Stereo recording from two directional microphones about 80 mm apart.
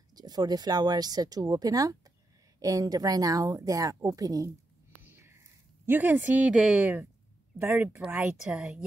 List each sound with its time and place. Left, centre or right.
0.1 s speech: right
5.0 s a sound: right
5.9 s speech: right
8.5 s a woman's voice: centre